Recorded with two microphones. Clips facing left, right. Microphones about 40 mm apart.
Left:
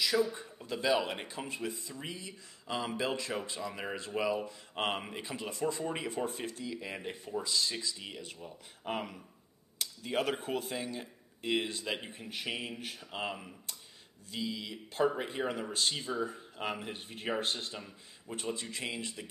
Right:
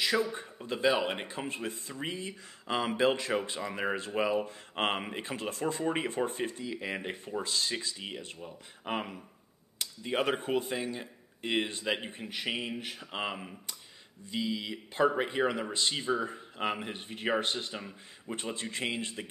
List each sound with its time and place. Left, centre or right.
0.0 s a man's voice: right
0.7 s speech: centre
1.3 s speech: right
4.1 s speech: right
4.5 s speech: right
5.2 s speech: right
8.4 s speech: right
11.4 s speech: right
15.0 s speech: right
15.3 s speech: right
18.3 s speech: right